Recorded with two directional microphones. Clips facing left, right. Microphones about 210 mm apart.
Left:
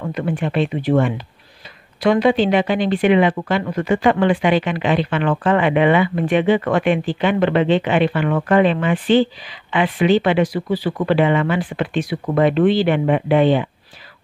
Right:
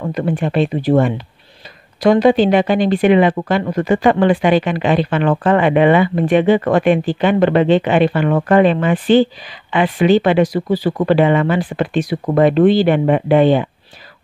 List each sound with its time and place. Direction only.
0.1 s speech: 40° right (ahead or behind)